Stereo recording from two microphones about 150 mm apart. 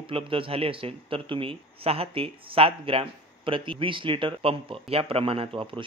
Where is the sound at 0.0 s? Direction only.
35° right (ahead or behind).